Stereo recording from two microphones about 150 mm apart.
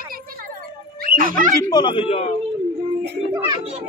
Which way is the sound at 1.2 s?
65° right (ahead or behind).